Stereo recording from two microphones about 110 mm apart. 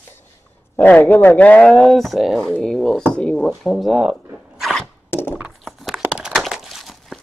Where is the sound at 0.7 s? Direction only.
15° left (ahead or behind); by 4.8 s centre (ahead or behind).